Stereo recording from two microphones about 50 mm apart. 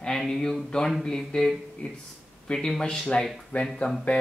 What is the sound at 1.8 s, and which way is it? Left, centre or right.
Speech, left.